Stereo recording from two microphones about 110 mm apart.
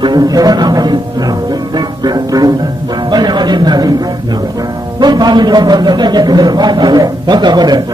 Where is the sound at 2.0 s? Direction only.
40° right (ahead or behind).